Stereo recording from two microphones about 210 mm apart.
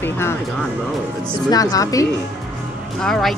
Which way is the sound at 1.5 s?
15° left (ahead or behind).